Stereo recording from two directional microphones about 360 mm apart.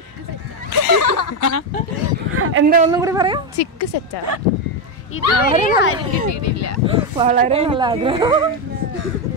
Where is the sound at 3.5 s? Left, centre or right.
Left.